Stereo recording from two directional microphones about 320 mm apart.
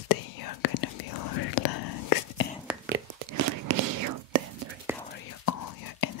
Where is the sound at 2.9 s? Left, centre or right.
Right.